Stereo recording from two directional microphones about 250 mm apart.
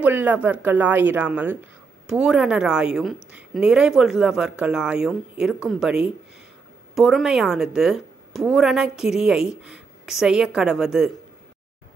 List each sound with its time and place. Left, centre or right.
0.0 s a woman's voice: centre